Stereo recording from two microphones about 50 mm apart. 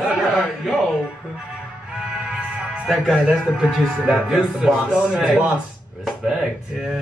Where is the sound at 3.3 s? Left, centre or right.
Centre.